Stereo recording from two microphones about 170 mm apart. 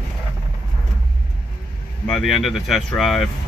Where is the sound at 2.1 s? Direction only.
Centre (ahead or behind).